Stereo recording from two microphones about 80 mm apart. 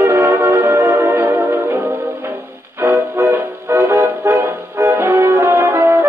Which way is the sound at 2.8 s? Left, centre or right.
Right.